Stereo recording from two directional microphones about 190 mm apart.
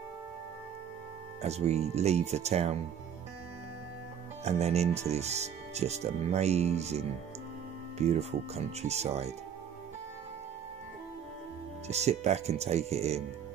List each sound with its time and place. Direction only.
1.4 s speech: 35° right (ahead or behind)
4.5 s speech: 35° right (ahead or behind)
11.9 s speech: 35° right (ahead or behind)